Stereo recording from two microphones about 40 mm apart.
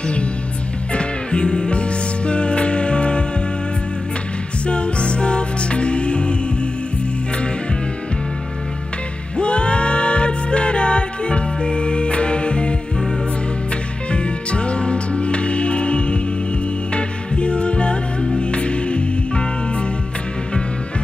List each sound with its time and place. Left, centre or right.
0.9 s music: left
4.6 s music: left
9.4 s music: left
14.1 s music: left